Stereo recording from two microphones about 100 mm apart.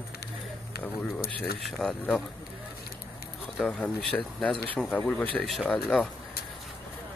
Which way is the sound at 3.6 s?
10° left (ahead or behind).